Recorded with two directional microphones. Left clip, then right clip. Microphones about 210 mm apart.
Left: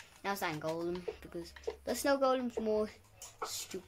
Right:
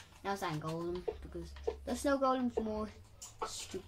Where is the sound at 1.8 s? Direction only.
50° left (ahead or behind).